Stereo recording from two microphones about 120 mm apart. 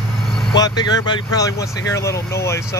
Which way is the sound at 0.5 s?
35° left (ahead or behind).